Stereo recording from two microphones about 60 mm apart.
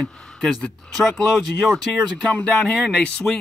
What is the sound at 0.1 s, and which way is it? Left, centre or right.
Speech, centre.